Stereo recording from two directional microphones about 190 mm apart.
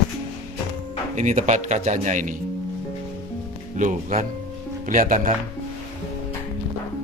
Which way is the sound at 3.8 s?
40° right (ahead or behind).